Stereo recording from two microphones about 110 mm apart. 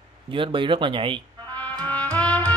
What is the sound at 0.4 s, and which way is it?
Speech, 50° right (ahead or behind).